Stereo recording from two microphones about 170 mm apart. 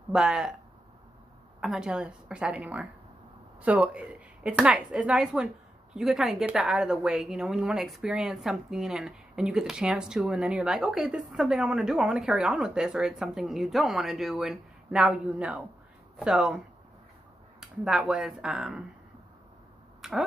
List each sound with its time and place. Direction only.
0.1 s a woman's voice: 5° right (ahead or behind)
1.6 s a woman's voice: 5° right (ahead or behind)
20.0 s a sound: centre (ahead or behind)